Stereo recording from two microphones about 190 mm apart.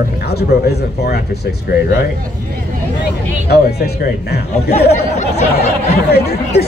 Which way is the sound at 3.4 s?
60° left (ahead or behind).